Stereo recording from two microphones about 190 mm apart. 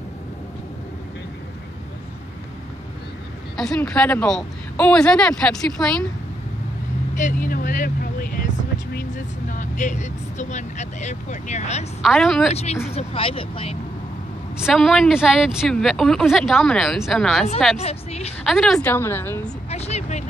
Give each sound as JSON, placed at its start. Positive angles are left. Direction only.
{"t": 3.5, "sound": "speech", "side_deg": 5}
{"t": 7.2, "sound": "speech", "side_deg": 45}
{"t": 12.0, "sound": "speech", "side_deg": 0}
{"t": 12.9, "sound": "speech", "side_deg": 30}
{"t": 14.6, "sound": "speech", "side_deg": 0}
{"t": 17.7, "sound": "speech", "side_deg": 35}
{"t": 18.4, "sound": "a woman's voice", "side_deg": 0}
{"t": 19.7, "sound": "speech", "side_deg": 35}